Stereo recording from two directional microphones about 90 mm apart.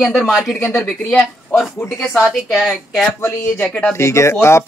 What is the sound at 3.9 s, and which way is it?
Speech, 30° left (ahead or behind).